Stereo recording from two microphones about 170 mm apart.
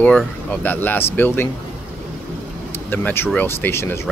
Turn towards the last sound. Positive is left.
turn(degrees=15)  # may be behind; listen again after turning